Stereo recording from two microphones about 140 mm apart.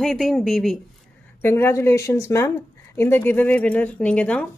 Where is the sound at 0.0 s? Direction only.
Centre (ahead or behind).